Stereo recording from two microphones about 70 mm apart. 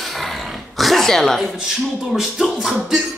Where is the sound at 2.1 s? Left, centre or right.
Centre.